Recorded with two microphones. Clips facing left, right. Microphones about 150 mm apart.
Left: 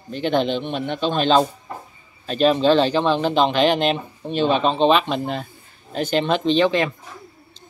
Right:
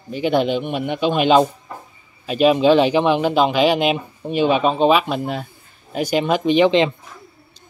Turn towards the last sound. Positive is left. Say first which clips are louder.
# right 3 dB
turn(degrees=-20)  # may be behind; listen again after turning